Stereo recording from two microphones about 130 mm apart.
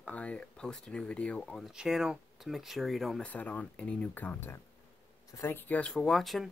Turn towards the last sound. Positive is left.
turn(degrees=0)  # may be behind; listen again after turning